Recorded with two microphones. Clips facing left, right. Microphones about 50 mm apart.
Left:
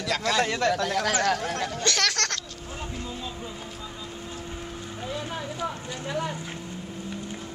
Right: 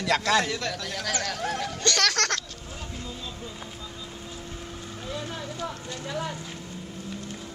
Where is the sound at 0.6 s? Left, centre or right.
Left.